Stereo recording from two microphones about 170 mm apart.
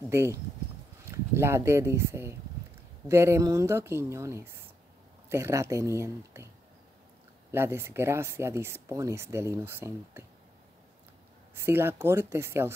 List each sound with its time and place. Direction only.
0.1 s speech: 15° right (ahead or behind)
7.5 s speech: 15° right (ahead or behind)
11.6 s speech: 15° right (ahead or behind)